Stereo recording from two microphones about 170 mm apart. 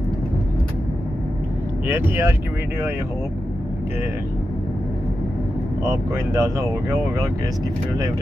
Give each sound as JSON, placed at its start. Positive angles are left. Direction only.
{"t": 1.9, "sound": "speech", "side_deg": -15}
{"t": 5.9, "sound": "speech", "side_deg": -15}